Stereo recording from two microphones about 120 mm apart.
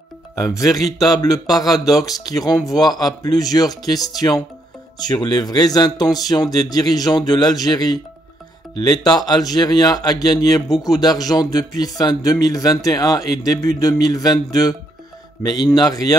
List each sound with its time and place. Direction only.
0.4 s speech: 25° left (ahead or behind)